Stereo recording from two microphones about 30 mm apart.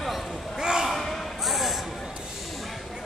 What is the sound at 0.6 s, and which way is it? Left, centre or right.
Slam, right.